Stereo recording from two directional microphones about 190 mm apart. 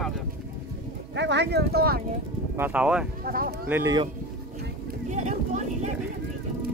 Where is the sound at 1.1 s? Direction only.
65° right (ahead or behind).